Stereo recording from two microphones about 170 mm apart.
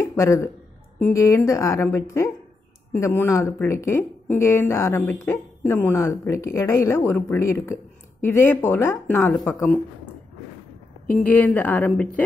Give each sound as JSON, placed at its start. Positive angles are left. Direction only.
{"t": 0.0, "sound": "speech", "side_deg": 15}
{"t": 11.2, "sound": "speech", "side_deg": 10}